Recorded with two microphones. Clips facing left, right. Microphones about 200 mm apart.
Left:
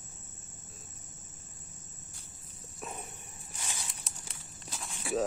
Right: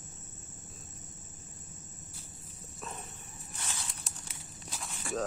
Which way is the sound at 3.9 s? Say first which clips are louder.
Right 1 dB; centre (ahead or behind).